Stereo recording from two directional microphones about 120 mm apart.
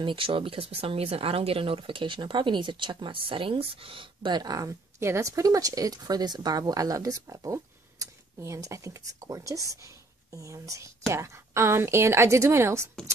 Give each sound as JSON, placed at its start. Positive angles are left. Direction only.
{"t": 0.0, "sound": "speech", "side_deg": -45}